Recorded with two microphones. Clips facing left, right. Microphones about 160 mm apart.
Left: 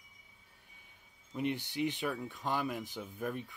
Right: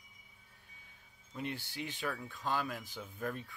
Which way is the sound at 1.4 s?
20° left (ahead or behind).